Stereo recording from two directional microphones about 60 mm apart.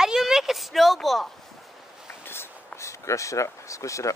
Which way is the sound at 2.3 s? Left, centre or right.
Left.